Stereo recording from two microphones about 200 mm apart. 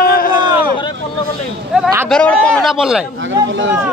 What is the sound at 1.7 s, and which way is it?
Speech, 5° right (ahead or behind).